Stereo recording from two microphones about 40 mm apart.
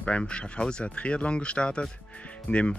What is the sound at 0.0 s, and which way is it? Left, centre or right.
Speech, left.